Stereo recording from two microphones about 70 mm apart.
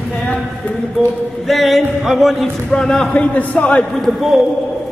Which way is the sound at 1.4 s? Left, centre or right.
Centre.